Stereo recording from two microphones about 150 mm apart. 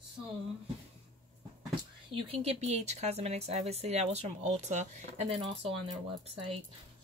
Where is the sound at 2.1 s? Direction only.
40° right (ahead or behind).